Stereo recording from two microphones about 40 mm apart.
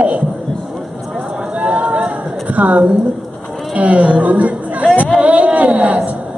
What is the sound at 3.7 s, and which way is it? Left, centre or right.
Speech, right.